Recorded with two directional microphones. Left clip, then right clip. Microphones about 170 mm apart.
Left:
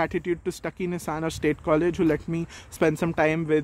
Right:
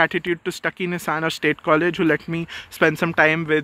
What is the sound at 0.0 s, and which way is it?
Speech, centre (ahead or behind).